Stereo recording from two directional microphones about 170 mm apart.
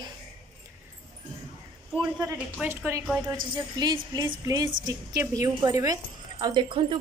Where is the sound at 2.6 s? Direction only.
15° right (ahead or behind).